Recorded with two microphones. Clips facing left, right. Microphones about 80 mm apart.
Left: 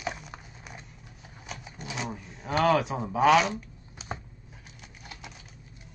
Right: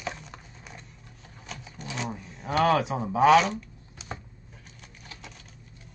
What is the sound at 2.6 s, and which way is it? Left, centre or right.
Speech, centre.